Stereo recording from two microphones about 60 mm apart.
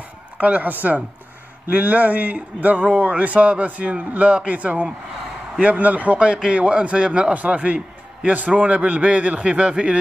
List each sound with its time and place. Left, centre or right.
0.4 s a man's voice: right